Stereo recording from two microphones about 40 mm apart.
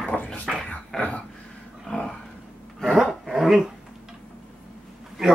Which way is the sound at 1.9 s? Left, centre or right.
Left.